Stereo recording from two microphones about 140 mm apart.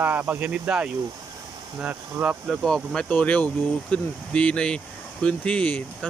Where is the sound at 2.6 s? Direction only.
5° left (ahead or behind).